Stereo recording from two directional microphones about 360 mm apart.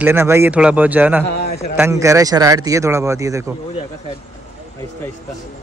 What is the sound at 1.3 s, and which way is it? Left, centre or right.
Speech, left.